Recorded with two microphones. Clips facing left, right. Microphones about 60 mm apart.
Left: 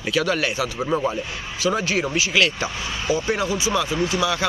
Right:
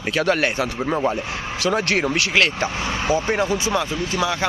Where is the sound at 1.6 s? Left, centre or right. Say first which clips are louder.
Right 1 dB; right.